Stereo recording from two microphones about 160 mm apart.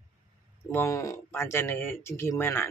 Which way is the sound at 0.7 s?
15° left (ahead or behind).